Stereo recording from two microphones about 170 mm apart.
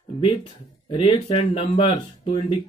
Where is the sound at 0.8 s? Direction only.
30° left (ahead or behind).